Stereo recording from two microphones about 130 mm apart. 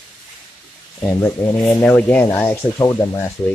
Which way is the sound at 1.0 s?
20° left (ahead or behind).